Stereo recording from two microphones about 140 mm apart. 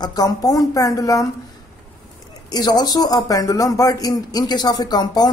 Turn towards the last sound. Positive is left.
turn(degrees=30)  # may be behind; listen again after turning